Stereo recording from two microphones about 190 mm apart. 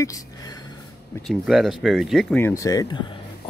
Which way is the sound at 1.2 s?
Centre (ahead or behind).